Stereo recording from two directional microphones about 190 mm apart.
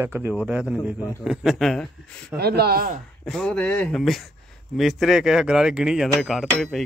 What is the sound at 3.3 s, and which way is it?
Speech, 5° left (ahead or behind).